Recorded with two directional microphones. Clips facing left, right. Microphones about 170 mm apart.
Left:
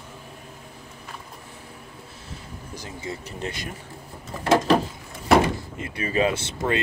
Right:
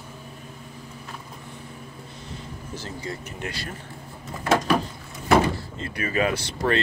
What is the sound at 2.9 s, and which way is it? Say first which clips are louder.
Speech: even; 25° left (ahead or behind).